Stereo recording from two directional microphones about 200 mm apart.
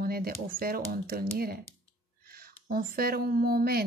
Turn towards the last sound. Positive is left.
turn(degrees=-50)  # may be behind; listen again after turning